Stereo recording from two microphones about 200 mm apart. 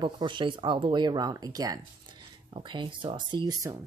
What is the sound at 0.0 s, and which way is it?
Speech, 25° right (ahead or behind).